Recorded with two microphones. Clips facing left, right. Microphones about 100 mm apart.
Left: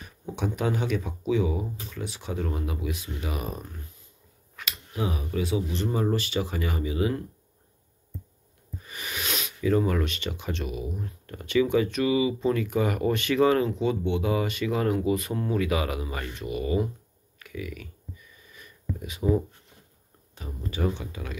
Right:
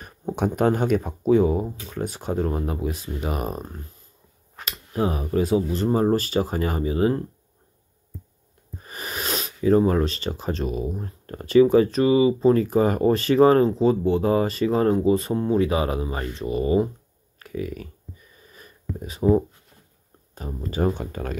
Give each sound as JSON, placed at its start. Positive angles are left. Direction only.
{"t": 0.0, "sound": "speech", "side_deg": -45}
{"t": 8.7, "sound": "speech", "side_deg": -40}
{"t": 17.4, "sound": "a sound", "side_deg": -40}
{"t": 20.3, "sound": "speech", "side_deg": -40}